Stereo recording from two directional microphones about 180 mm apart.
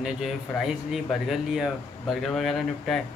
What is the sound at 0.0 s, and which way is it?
Speech, centre (ahead or behind).